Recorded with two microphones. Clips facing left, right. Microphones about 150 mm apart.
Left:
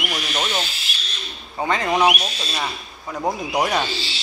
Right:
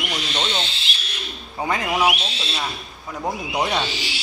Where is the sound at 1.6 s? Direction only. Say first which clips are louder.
Left 2 dB; 5° right (ahead or behind).